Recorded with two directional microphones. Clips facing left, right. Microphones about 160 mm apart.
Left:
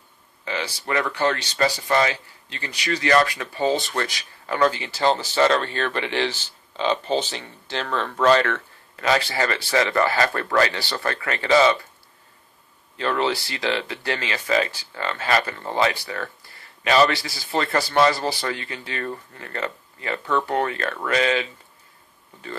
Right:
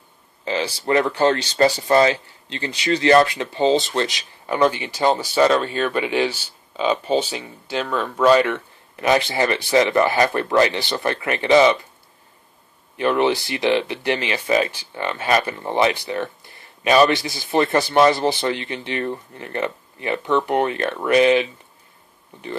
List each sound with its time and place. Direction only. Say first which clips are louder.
0.5 s speech: right 6 dB; 30° right (ahead or behind)
12.9 s speech: right 5 dB; 20° right (ahead or behind)